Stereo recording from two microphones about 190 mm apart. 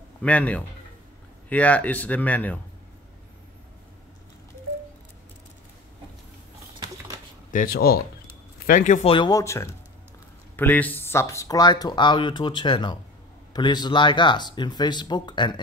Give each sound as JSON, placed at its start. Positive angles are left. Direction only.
{"t": 0.2, "sound": "speech", "side_deg": 5}
{"t": 7.5, "sound": "speech", "side_deg": 50}
{"t": 9.1, "sound": "speech", "side_deg": 20}